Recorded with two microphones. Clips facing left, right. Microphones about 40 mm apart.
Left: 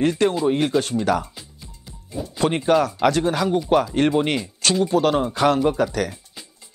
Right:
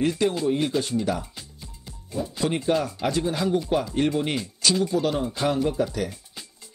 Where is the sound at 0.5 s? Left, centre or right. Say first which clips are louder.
Left 4 dB; left.